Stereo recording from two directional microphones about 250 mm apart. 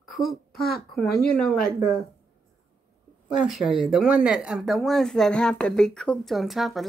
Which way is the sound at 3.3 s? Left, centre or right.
Centre.